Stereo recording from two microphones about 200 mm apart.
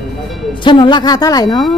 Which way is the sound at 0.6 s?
25° left (ahead or behind).